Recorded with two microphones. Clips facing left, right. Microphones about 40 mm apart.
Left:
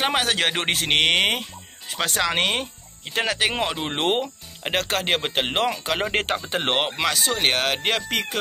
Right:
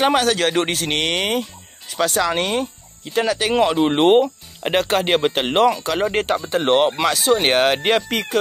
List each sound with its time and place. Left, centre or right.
0.1 s speech: left
3.5 s speech: centre
6.2 s speech: left
6.5 s speech: left
7.0 s speech: centre
7.3 s speech: centre
8.1 s speech: centre